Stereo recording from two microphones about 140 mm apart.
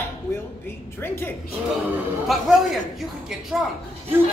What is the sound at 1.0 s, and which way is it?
Speech, 15° left (ahead or behind).